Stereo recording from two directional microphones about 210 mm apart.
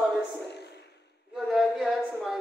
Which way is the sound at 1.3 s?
Centre (ahead or behind).